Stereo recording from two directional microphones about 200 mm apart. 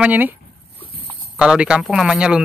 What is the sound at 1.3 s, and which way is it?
Speech, 5° right (ahead or behind).